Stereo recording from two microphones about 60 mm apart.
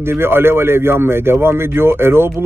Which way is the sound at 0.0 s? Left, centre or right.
Right.